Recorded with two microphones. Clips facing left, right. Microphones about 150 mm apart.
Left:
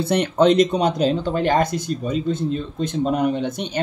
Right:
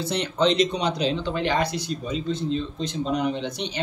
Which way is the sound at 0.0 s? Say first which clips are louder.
Left 6 dB; 55° left (ahead or behind).